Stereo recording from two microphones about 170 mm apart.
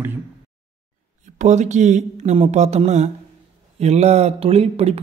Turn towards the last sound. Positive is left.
turn(degrees=-35)  # may be behind; listen again after turning